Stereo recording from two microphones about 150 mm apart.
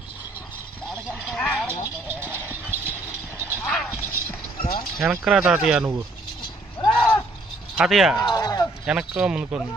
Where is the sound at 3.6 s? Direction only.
5° left (ahead or behind).